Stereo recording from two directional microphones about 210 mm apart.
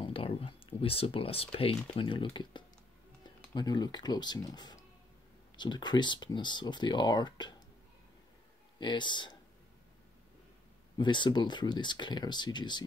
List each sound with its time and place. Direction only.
0.0 s speech: 25° left (ahead or behind)
8.7 s speech: 20° left (ahead or behind)
11.0 s speech: 20° left (ahead or behind)